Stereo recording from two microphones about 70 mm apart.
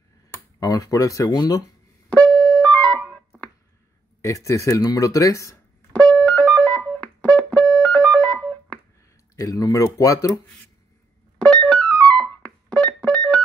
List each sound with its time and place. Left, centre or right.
0.6 s speech: left
2.0 s music: centre
4.2 s speech: left
5.9 s music: centre
9.4 s speech: left
11.3 s music: centre